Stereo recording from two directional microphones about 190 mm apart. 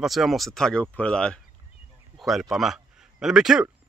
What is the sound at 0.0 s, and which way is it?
Speech, centre (ahead or behind).